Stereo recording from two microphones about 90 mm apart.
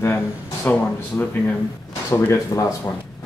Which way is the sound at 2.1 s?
35° left (ahead or behind).